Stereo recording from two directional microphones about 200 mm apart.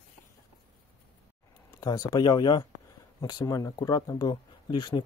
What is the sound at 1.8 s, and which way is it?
Speech, 20° left (ahead or behind).